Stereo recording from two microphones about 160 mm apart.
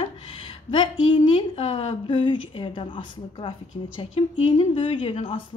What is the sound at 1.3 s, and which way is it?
A woman's voice, 40° left (ahead or behind).